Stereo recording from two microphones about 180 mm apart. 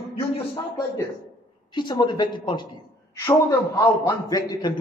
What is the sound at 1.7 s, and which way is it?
Speech, 25° left (ahead or behind).